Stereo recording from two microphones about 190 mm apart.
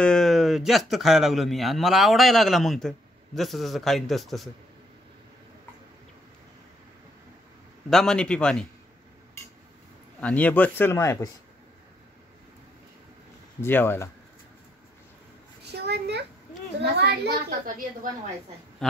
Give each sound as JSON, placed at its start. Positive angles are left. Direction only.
{"t": 0.0, "sound": "a man's voice", "side_deg": 5}
{"t": 7.9, "sound": "a man's voice", "side_deg": 0}
{"t": 10.2, "sound": "speech", "side_deg": 5}
{"t": 13.6, "sound": "speech", "side_deg": 10}
{"t": 15.6, "sound": "a sound", "side_deg": -60}
{"t": 16.8, "sound": "a child's voice", "side_deg": -55}
{"t": 18.8, "sound": "speech", "side_deg": 0}